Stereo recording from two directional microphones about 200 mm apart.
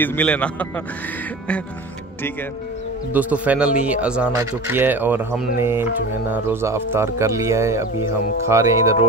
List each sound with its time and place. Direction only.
0.0 s a man's voice: 10° left (ahead or behind)
3.1 s a man's voice: 10° right (ahead or behind)